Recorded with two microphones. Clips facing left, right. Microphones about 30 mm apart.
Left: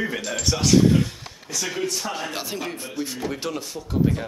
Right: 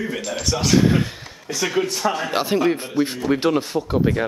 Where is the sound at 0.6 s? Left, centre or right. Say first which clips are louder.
Even; centre.